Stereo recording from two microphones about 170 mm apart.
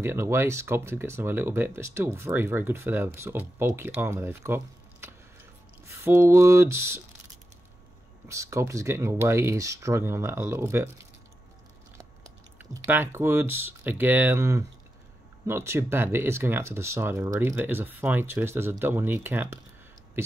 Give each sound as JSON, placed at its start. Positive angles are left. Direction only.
{"t": 0.0, "sound": "speech", "side_deg": -15}
{"t": 5.9, "sound": "speech", "side_deg": -15}
{"t": 8.3, "sound": "speech", "side_deg": -15}
{"t": 12.5, "sound": "speech", "side_deg": -10}